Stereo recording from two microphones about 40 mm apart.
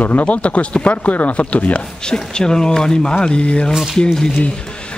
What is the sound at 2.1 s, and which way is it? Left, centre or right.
Speech, centre.